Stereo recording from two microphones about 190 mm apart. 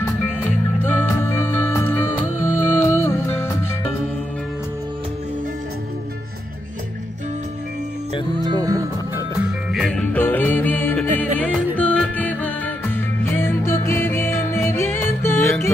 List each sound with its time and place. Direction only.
0.0 s music: 10° left (ahead or behind)
8.5 s music: 20° right (ahead or behind)
9.7 s music: centre (ahead or behind)